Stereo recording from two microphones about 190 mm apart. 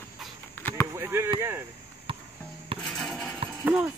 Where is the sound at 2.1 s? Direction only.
25° right (ahead or behind).